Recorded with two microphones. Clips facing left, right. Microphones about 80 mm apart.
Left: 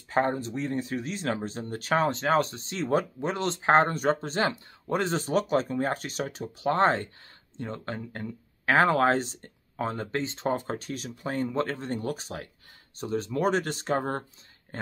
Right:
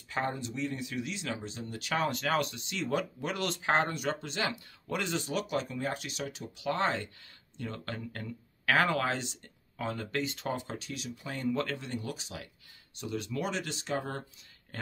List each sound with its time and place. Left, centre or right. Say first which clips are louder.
0.1 s speech: left 8 dB; left
7.5 s speech: left 4 dB; left
10.6 s speech: left 6 dB; left
11.4 s speech: even; left